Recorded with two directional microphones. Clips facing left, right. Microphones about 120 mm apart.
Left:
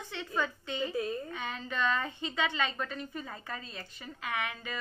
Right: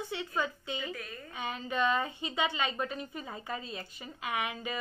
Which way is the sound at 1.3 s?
10° right (ahead or behind).